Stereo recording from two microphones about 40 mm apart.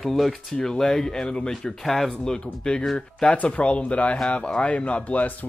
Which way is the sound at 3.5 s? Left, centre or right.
Left.